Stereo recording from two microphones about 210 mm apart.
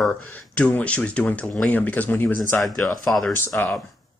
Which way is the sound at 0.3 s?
5° left (ahead or behind).